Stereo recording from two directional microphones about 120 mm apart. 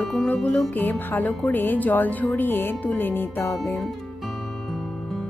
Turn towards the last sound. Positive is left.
turn(degrees=20)  # may be behind; listen again after turning